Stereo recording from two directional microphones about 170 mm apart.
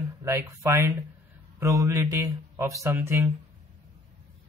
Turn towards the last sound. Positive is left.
turn(degrees=-15)  # may be behind; listen again after turning